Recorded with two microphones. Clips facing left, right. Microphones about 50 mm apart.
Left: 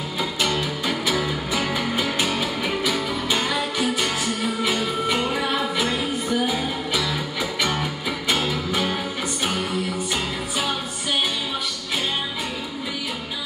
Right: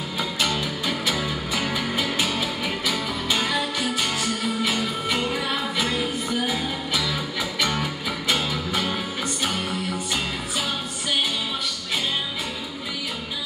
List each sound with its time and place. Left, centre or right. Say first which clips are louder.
1.0 s music: left 2 dB; centre
2.2 s music: left 2 dB; left
5.8 s music: left 1 dB; centre
8.3 s music: left 2 dB; centre